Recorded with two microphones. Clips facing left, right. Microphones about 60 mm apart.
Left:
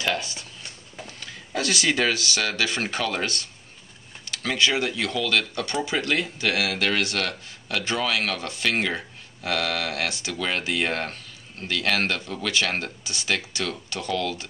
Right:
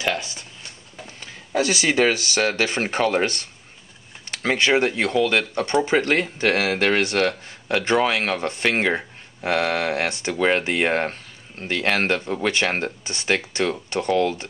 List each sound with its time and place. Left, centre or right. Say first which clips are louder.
0.0 s a sound: right 2 dB; right
1.0 s speech: right 1 dB; right
13.0 s speech: right 4 dB; right